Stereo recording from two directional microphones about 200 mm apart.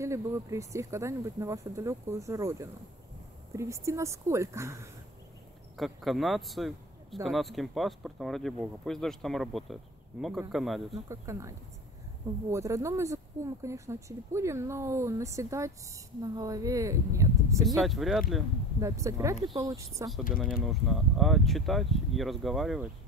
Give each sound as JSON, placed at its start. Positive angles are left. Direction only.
{"t": 0.0, "sound": "speech", "side_deg": -15}
{"t": 5.8, "sound": "a man's voice", "side_deg": 0}
{"t": 11.1, "sound": "speech", "side_deg": -15}
{"t": 17.8, "sound": "speech", "side_deg": 0}
{"t": 18.8, "sound": "speech", "side_deg": -15}
{"t": 20.4, "sound": "speech", "side_deg": 0}